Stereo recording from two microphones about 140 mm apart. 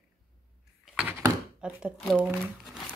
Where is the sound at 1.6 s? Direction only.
5° right (ahead or behind).